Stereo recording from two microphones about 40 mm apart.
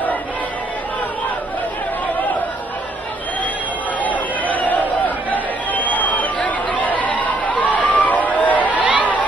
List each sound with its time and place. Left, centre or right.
2.0 s chatter: left
4.6 s chatter: left
8.7 s chatter: right